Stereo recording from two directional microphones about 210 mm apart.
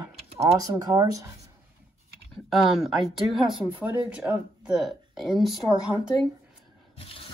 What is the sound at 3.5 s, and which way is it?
Speech, 5° right (ahead or behind).